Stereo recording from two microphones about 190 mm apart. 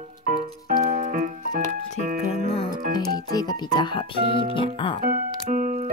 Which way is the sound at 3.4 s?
20° left (ahead or behind).